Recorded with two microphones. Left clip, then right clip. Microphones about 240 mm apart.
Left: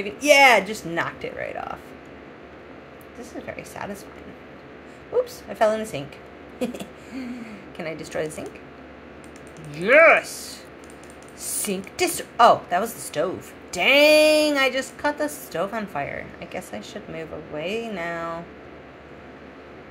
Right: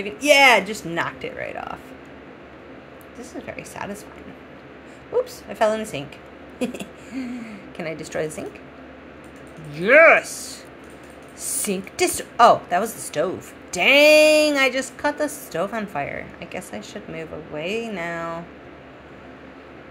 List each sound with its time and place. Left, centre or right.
0.0 s a woman's voice: centre
3.2 s a woman's voice: centre
5.1 s a woman's voice: centre
6.6 s a sound: centre
7.4 s a woman's voice: centre
9.8 s a woman's voice: centre
11.6 s a woman's voice: centre